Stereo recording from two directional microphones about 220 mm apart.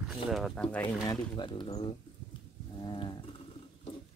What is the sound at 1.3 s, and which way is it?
Speech, 20° left (ahead or behind).